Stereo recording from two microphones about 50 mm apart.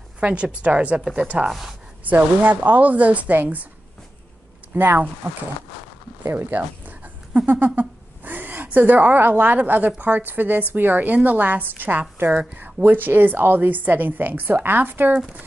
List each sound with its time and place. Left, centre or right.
0.2 s a woman's voice: right
1.5 s speech: centre
2.0 s a woman's voice: right
4.7 s speech: right
6.2 s speech: right
6.5 s a sound: right
8.6 s a woman's voice: right